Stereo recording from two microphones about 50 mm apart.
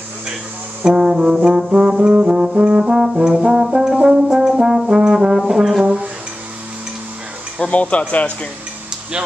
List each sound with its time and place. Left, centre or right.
0.8 s brass instrument: centre
7.7 s speech: left